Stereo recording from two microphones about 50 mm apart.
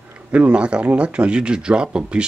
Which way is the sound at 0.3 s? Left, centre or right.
Right.